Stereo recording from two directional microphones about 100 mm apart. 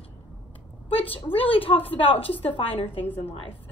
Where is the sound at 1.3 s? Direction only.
65° left (ahead or behind).